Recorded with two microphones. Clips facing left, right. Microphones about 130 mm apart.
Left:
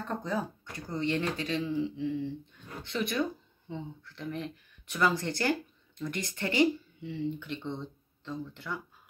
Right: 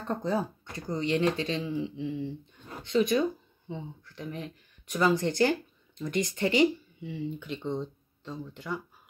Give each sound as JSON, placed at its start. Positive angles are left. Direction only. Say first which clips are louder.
{"t": 0.1, "sound": "speech", "louder": "right 5 dB", "side_deg": -35}
{"t": 0.7, "sound": "speech", "louder": "right 3 dB", "side_deg": -15}